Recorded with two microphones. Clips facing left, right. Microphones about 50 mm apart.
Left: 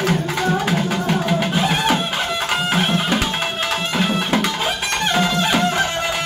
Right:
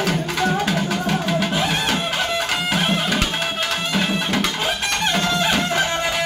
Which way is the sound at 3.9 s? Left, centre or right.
Centre.